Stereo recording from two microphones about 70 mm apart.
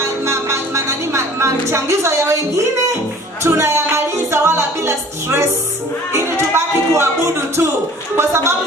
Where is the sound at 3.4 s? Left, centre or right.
Right.